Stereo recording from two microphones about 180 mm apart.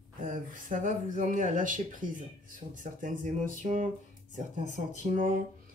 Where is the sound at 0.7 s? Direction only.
45° right (ahead or behind).